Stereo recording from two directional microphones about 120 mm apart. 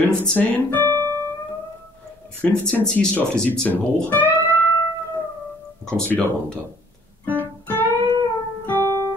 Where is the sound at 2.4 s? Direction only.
10° left (ahead or behind).